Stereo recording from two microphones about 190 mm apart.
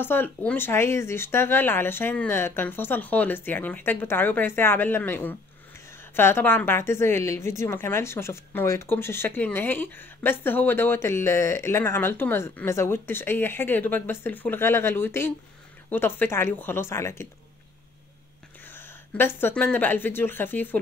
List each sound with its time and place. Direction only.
0.0 s a woman's voice: 10° left (ahead or behind)
18.7 s speech: 10° left (ahead or behind)